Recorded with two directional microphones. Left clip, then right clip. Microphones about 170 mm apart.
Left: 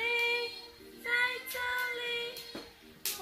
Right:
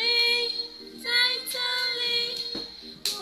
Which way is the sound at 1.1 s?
5° right (ahead or behind).